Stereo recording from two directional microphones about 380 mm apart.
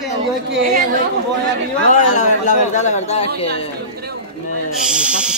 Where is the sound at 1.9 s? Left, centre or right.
Centre.